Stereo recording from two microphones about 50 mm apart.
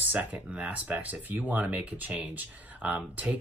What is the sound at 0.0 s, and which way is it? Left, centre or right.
Speech, right.